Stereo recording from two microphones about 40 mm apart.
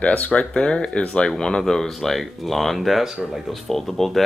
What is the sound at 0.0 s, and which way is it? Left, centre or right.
Speech, left.